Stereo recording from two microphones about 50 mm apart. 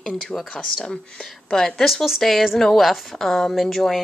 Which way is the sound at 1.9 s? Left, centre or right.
Centre.